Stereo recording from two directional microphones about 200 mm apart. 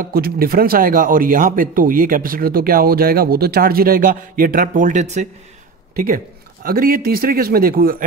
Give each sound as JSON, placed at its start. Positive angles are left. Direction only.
{"t": 0.0, "sound": "speech", "side_deg": -45}
{"t": 5.9, "sound": "speech", "side_deg": -45}